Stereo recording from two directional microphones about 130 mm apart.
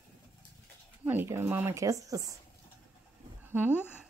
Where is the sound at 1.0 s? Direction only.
15° right (ahead or behind).